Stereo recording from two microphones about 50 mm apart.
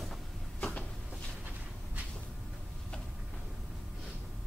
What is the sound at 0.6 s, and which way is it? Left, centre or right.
Cupboard open or close, left.